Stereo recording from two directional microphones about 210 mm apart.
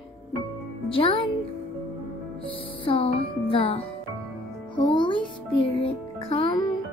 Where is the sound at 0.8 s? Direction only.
25° left (ahead or behind).